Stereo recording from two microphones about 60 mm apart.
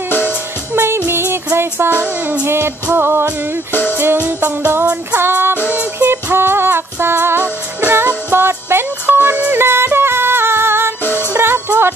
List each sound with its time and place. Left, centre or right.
0.7 s music: right
11.1 s music: left
11.3 s music: right